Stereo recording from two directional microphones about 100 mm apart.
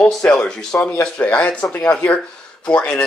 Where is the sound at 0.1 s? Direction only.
10° left (ahead or behind).